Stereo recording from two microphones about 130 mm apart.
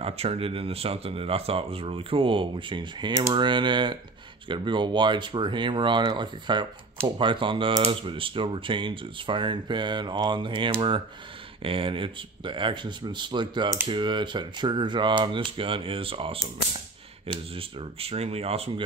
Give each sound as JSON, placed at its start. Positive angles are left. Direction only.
{"t": 0.0, "sound": "speech", "side_deg": -50}